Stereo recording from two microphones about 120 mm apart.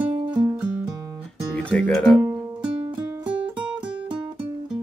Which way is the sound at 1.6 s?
10° left (ahead or behind).